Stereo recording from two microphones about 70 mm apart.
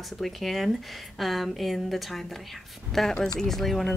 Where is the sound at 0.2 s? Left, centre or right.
Centre.